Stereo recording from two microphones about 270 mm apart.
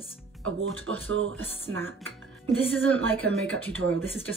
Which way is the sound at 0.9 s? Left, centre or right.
Right.